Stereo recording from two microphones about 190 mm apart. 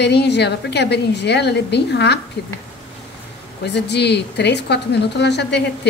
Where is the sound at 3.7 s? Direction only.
65° left (ahead or behind).